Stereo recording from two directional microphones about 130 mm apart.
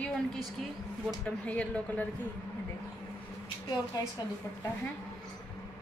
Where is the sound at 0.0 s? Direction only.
5° left (ahead or behind).